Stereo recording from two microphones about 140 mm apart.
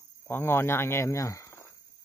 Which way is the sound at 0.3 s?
15° left (ahead or behind).